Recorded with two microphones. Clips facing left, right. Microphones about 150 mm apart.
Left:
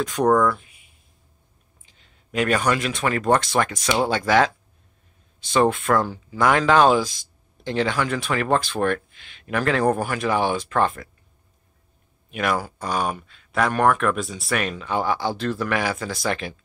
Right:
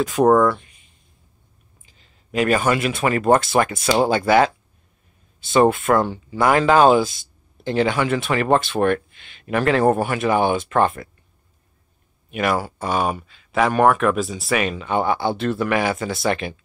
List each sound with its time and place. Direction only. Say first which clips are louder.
0.0 s speech: right 4 dB; 5° right (ahead or behind)
0.4 s a sound: right 3 dB; centre (ahead or behind)
1.9 s speech: right 3 dB; centre (ahead or behind)
12.3 s speech: right 3 dB; centre (ahead or behind)